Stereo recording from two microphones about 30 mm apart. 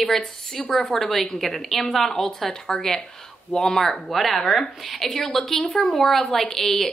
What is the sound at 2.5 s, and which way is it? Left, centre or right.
A woman's voice, centre.